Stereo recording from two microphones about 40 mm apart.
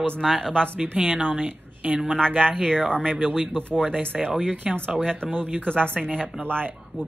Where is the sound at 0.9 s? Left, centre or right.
Right.